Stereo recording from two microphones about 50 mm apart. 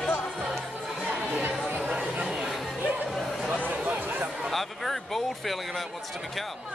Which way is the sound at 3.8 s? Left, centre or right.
Right.